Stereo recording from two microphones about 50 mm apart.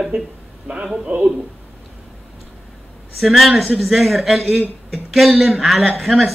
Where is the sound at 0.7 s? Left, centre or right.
Right.